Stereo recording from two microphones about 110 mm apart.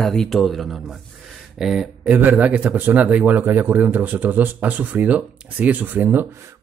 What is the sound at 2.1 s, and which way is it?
Speech, 15° right (ahead or behind).